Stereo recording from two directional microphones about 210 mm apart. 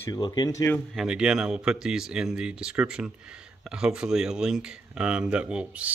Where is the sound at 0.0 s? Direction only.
20° left (ahead or behind).